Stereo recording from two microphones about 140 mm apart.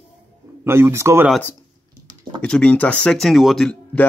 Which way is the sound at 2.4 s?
5° left (ahead or behind).